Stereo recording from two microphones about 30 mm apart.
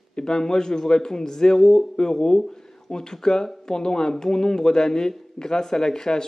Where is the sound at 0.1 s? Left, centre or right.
Left.